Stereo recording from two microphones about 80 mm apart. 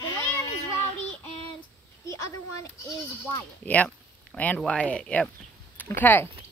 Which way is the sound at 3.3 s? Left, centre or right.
Centre.